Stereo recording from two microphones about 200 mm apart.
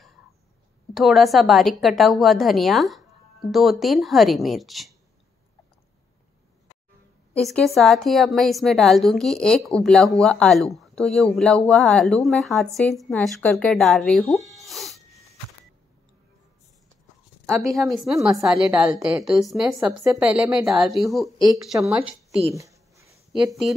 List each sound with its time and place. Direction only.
0.9 s a woman's voice: centre (ahead or behind)
7.3 s a woman's voice: 5° left (ahead or behind)
14.5 s a sound: centre (ahead or behind)
17.6 s a woman's voice: centre (ahead or behind)
22.5 s a sound: 15° right (ahead or behind)
23.3 s a woman's voice: centre (ahead or behind)